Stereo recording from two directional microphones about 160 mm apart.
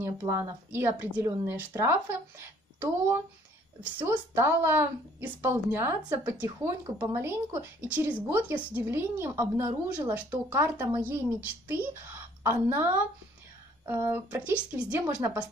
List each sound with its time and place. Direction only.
0.0 s speech: 20° right (ahead or behind)
13.8 s speech: 15° right (ahead or behind)